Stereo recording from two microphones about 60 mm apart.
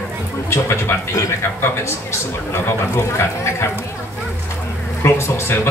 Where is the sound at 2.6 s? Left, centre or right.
Left.